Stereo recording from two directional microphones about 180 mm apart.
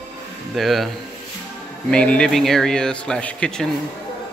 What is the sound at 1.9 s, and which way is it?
Speech, 5° left (ahead or behind).